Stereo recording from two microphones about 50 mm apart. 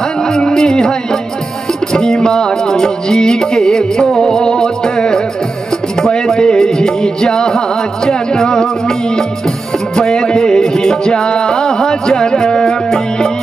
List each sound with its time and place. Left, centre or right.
0.3 s music: centre
2.0 s music: centre